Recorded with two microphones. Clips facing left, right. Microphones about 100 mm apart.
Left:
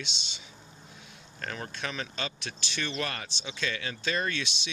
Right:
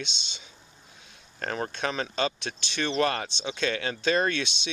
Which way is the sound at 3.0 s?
40° right (ahead or behind).